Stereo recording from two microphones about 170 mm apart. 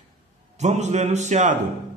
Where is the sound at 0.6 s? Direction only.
40° right (ahead or behind).